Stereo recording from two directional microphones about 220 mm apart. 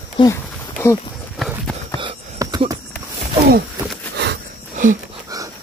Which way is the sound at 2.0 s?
20° right (ahead or behind).